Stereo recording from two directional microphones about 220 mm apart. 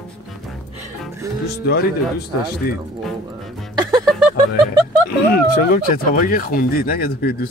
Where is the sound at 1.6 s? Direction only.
45° left (ahead or behind).